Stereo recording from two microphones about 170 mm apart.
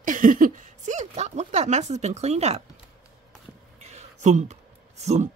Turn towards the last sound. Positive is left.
turn(degrees=-40)  # may be behind; listen again after turning